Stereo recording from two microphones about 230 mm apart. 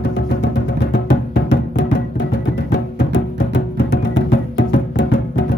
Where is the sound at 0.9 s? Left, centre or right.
Left.